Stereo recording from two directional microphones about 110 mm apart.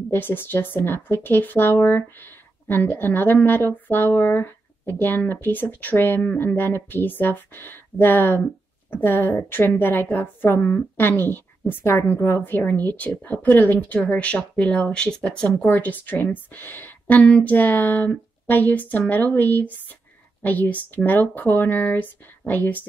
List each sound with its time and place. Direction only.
0.1 s a woman's voice: 20° left (ahead or behind)